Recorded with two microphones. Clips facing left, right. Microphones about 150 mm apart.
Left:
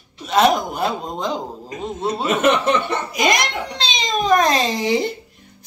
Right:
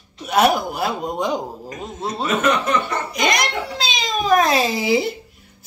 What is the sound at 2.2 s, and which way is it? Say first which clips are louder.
Speech: left 2 dB; 25° left (ahead or behind).